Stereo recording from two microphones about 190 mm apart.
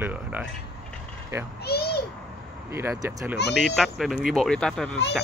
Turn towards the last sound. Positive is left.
turn(degrees=5)  # may be behind; listen again after turning